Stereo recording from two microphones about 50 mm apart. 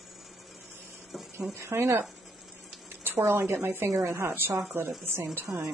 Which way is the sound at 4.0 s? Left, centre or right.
Right.